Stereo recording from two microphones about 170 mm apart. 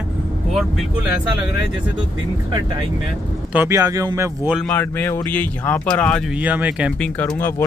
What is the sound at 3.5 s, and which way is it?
Speech, 15° right (ahead or behind).